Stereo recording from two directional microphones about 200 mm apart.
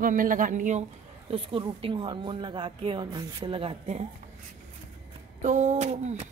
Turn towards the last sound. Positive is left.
turn(degrees=-35)  # may be behind; listen again after turning